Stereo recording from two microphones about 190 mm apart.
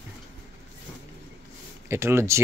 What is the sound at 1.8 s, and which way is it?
Speech, 15° right (ahead or behind).